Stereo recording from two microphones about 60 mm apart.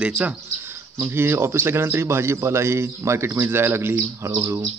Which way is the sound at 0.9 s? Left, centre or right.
Right.